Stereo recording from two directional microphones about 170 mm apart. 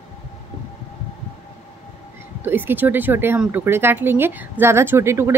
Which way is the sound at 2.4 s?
10° right (ahead or behind).